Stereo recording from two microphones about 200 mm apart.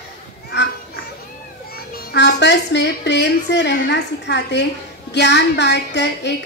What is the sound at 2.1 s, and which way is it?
A child's voice, 60° left (ahead or behind).